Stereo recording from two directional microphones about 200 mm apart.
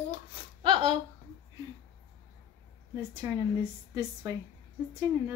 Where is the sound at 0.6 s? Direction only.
25° right (ahead or behind).